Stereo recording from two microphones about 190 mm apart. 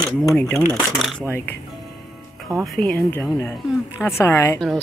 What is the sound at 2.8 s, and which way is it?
Speech, 5° left (ahead or behind).